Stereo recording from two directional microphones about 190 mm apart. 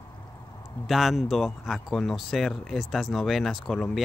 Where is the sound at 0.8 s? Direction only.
Centre (ahead or behind).